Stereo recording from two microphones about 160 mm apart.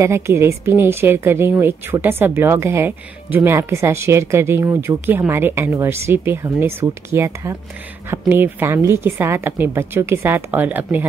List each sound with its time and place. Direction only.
0.0 s a woman's voice: 15° right (ahead or behind)